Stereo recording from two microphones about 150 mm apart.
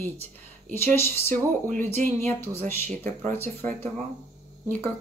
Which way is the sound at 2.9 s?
55° right (ahead or behind).